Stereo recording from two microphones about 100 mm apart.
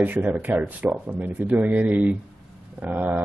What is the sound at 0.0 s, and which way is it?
Speech, 15° right (ahead or behind).